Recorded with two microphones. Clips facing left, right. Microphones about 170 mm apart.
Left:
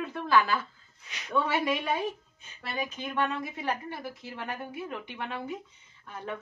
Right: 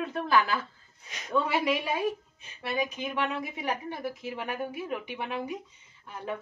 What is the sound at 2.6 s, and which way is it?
A woman's voice, 10° right (ahead or behind).